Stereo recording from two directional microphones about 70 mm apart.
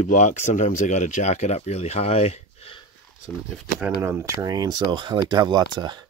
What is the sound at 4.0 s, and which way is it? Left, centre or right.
Speech, right.